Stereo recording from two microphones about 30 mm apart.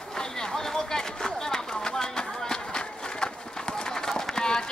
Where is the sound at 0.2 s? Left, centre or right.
Centre.